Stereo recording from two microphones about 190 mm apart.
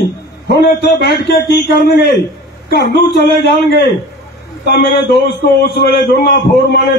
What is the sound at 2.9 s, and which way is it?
A man's voice, 65° left (ahead or behind).